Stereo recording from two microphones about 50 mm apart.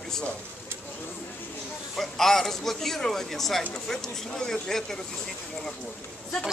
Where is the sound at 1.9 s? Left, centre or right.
Centre.